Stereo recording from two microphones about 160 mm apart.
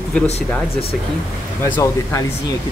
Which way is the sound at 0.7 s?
40° left (ahead or behind).